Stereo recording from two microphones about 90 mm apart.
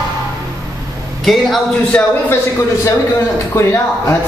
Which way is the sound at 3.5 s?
30° left (ahead or behind).